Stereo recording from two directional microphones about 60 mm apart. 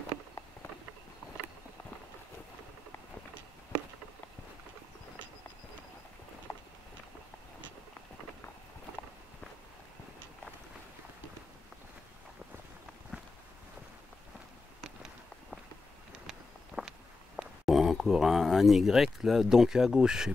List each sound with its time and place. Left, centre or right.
6.5 s walk: left
16.3 s a sound: centre
17.4 s speech: centre